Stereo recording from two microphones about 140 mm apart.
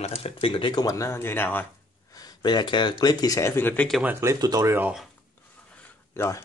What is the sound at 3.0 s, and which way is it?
Speech, 30° left (ahead or behind).